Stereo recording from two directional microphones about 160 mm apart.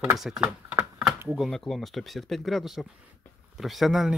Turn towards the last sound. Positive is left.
turn(degrees=0)  # may be behind; listen again after turning